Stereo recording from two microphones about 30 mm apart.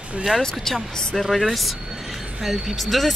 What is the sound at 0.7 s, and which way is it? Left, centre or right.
Speech, centre.